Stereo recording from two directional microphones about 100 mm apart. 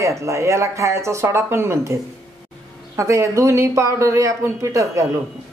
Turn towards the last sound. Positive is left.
turn(degrees=-30)  # may be behind; listen again after turning